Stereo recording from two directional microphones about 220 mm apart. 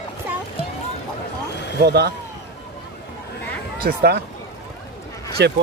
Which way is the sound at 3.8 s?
45° right (ahead or behind).